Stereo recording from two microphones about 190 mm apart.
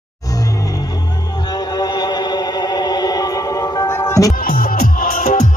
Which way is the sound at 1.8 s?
20° left (ahead or behind).